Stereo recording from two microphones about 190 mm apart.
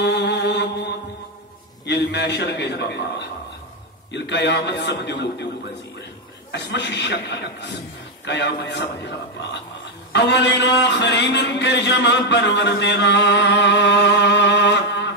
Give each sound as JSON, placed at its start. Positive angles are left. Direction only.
{"t": 0.0, "sound": "mantra", "side_deg": 65}
{"t": 1.9, "sound": "a man's voice", "side_deg": 65}
{"t": 6.5, "sound": "a man's voice", "side_deg": 65}
{"t": 10.1, "sound": "a man's voice", "side_deg": 65}